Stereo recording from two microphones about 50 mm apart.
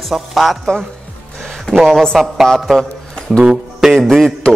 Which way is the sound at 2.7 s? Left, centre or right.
Centre.